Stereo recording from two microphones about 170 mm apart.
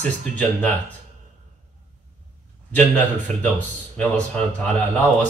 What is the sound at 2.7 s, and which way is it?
A man's voice, 10° left (ahead or behind).